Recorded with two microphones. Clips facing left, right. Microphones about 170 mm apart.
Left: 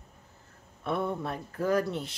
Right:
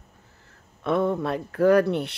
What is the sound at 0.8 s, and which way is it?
Speech, 90° right.